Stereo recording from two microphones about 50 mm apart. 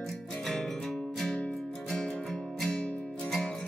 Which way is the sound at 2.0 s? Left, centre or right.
Centre.